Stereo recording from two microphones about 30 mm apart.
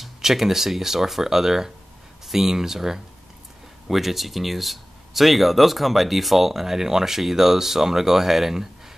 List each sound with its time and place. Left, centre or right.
0.2 s speech: centre